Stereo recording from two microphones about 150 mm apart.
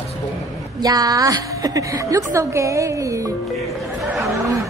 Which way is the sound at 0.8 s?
25° right (ahead or behind).